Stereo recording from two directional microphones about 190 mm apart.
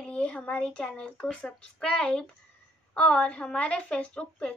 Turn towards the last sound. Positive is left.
turn(degrees=5)  # may be behind; listen again after turning